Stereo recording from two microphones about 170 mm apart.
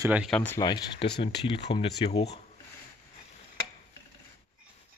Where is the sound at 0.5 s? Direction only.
25° left (ahead or behind).